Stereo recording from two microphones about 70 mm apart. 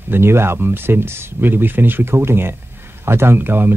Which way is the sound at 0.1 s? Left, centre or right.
Right.